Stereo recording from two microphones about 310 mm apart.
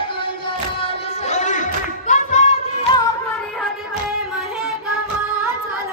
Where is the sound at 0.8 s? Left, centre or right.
Left.